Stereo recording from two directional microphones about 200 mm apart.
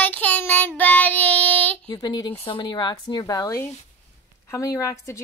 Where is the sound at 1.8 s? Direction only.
20° left (ahead or behind).